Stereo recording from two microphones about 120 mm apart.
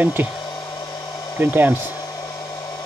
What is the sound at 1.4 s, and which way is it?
Speech, 15° right (ahead or behind).